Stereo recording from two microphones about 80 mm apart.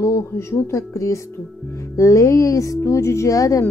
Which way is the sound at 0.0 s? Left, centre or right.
Left.